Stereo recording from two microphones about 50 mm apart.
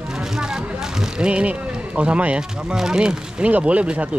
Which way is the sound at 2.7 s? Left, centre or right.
Centre.